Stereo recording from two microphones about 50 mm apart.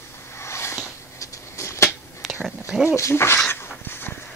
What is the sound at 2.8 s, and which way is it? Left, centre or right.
Speech, left.